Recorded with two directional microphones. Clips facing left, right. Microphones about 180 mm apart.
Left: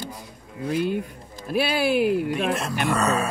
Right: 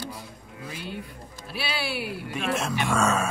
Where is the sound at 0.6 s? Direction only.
55° left (ahead or behind).